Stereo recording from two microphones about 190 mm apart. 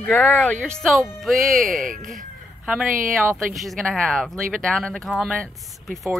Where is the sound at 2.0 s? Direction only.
Centre (ahead or behind).